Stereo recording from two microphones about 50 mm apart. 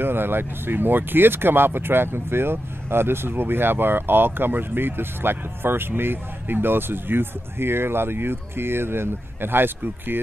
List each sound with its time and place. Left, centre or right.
0.0 s speech: right